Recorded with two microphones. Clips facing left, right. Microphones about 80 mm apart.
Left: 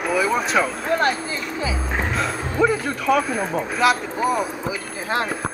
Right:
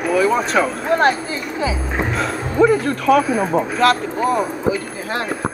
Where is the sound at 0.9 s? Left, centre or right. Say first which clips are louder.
Right 4 dB; right.